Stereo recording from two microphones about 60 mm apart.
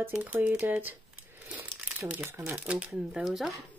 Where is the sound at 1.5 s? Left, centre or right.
Right.